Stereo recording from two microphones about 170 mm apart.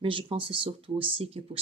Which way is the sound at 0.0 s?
30° right (ahead or behind).